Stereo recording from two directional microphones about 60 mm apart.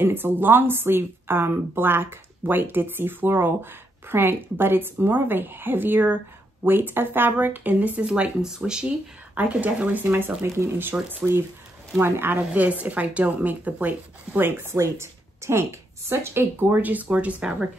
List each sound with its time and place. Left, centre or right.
0.0 s a woman's voice: right; by 8.8 s centre
9.3 s speech: right
10.0 s a woman's voice: right
12.4 s speech: right
14.6 s a woman's voice: right; by 17.6 s centre